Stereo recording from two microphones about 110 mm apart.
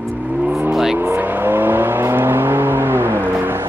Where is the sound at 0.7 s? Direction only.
5° right (ahead or behind).